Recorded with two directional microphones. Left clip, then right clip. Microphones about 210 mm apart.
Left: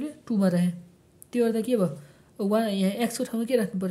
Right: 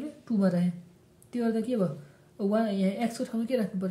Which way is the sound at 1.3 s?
35° left (ahead or behind).